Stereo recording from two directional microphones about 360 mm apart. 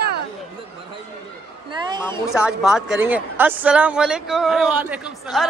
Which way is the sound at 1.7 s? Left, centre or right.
Centre.